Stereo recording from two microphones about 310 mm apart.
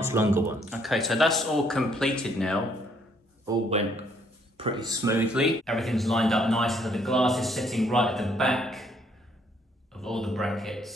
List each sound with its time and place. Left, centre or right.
0.0 s speech: centre
3.4 s a man's voice: centre